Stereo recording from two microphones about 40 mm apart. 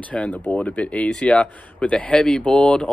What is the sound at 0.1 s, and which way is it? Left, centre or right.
Speech, left.